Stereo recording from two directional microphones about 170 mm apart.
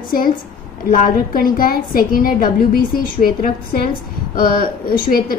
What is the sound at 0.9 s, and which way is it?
A woman's voice, 55° left (ahead or behind).